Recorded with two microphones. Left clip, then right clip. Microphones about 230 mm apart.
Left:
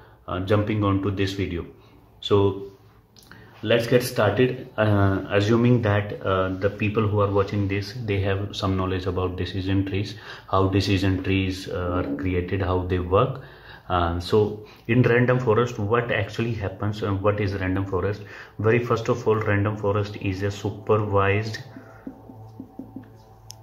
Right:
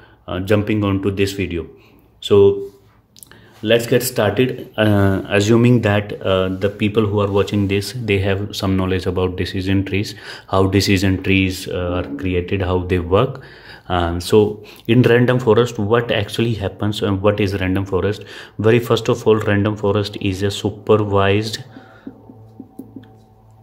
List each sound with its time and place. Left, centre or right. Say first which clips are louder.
0.3 s speech: right 6 dB; right
3.6 s speech: right 5 dB; right